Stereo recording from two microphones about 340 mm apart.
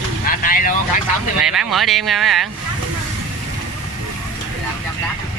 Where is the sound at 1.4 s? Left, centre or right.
Centre.